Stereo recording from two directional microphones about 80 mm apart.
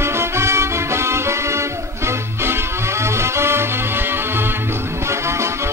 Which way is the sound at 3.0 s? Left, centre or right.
Right.